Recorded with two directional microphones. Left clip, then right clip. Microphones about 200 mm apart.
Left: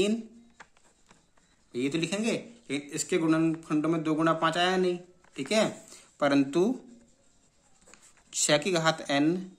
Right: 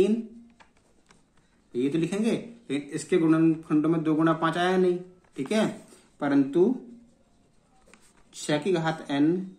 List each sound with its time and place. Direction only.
1.7 s speech: 30° left (ahead or behind)
6.1 s speech: 35° left (ahead or behind)
8.3 s speech: 35° left (ahead or behind)